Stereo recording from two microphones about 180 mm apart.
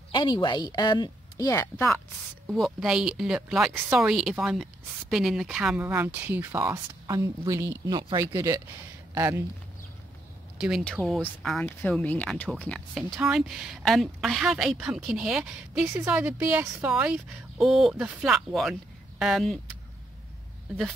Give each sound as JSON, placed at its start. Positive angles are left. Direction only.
{"t": 0.1, "sound": "a woman's voice", "side_deg": 25}
{"t": 2.4, "sound": "speech", "side_deg": 0}
{"t": 10.6, "sound": "speech", "side_deg": 0}